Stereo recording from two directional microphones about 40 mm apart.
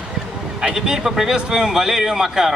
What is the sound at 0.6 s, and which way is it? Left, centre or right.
A man's voice, centre.